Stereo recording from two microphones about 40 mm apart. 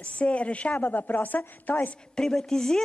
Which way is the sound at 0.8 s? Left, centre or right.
Left.